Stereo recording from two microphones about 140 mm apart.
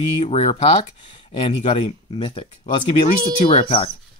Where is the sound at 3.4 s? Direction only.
40° left (ahead or behind).